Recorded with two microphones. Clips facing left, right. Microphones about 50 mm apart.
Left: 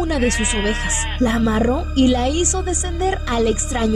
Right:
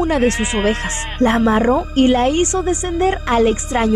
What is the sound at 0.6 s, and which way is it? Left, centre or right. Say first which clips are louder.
Speech: right 3 dB; right.